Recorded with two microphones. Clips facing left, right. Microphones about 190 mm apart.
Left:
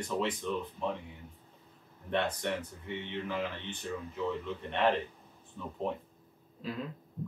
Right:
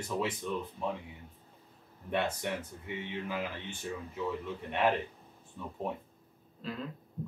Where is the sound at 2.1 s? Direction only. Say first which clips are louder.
Left 1 dB; 5° right (ahead or behind).